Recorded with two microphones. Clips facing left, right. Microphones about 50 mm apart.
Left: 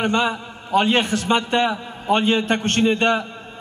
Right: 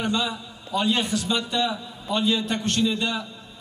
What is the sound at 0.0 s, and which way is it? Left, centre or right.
A man's voice, left.